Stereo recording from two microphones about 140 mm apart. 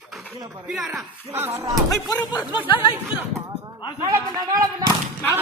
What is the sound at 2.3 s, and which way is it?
Speech, 35° left (ahead or behind).